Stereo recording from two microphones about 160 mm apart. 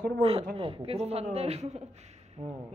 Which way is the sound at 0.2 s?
35° right (ahead or behind).